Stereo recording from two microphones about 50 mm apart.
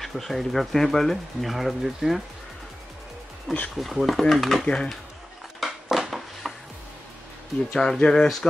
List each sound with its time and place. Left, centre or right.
0.0 s speech: centre
3.7 s speech: centre
4.6 s speech: centre
5.6 s a sound: centre
7.7 s speech: centre